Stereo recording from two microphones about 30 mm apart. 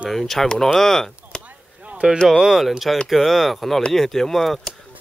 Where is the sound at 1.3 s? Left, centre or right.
Left.